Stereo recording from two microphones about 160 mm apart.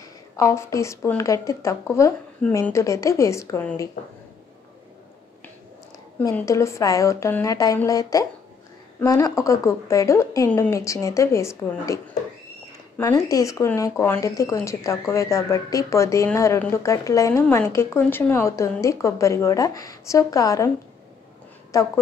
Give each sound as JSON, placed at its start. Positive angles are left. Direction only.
{"t": 0.4, "sound": "a woman's voice", "side_deg": 20}
{"t": 4.0, "sound": "speech", "side_deg": 60}
{"t": 6.4, "sound": "a woman's voice", "side_deg": 20}
{"t": 21.7, "sound": "a woman's voice", "side_deg": 20}